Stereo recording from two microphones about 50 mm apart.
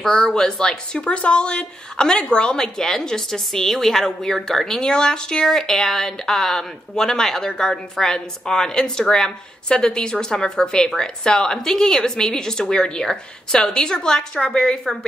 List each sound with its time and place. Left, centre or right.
0.0 s a woman's voice: centre